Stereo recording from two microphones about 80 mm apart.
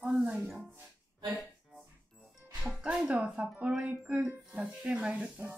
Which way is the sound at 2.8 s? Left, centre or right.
Centre.